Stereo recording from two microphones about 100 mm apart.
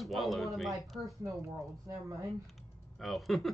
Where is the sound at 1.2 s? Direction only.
30° right (ahead or behind).